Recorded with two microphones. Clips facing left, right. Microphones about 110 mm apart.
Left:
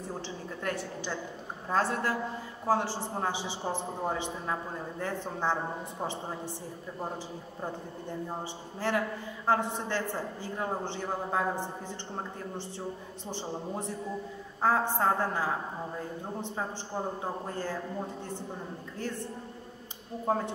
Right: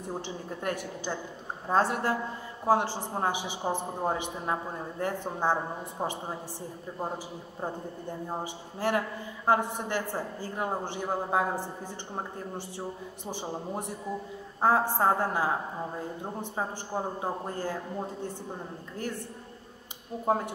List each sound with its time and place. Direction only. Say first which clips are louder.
0.1 s a man's voice: right 6 dB; 20° right (ahead or behind)
7.6 s a man's voice: right 3 dB; 20° right (ahead or behind)
20.2 s a man's voice: right 2 dB; 15° right (ahead or behind)